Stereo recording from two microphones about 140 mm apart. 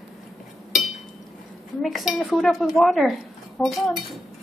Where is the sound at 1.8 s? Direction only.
Centre (ahead or behind).